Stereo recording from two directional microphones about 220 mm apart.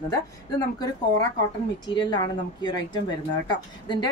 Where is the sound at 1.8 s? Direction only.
20° left (ahead or behind).